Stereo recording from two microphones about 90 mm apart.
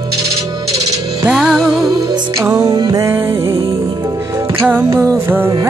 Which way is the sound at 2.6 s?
50° right (ahead or behind).